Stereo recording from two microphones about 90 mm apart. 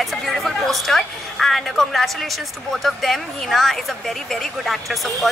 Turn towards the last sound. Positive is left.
turn(degrees=0)  # may be behind; listen again after turning